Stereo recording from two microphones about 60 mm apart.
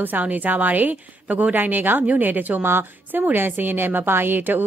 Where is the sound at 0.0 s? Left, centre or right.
Right.